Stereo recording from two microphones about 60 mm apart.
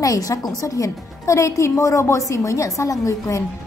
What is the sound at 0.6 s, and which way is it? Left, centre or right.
A woman's voice, left.